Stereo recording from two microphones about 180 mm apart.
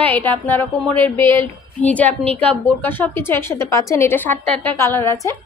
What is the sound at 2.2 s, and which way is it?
Speech, 35° right (ahead or behind).